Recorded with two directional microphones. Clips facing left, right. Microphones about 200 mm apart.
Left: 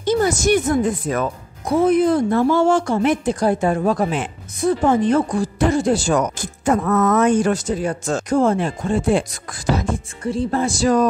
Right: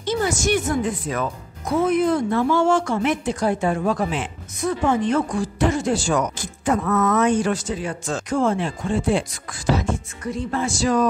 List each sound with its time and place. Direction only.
0.0 s speech: 45° left (ahead or behind)
1.7 s speech: 30° left (ahead or behind)
10.2 s speech: 30° left (ahead or behind)